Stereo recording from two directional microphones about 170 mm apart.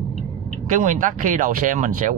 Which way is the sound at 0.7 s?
50° right (ahead or behind).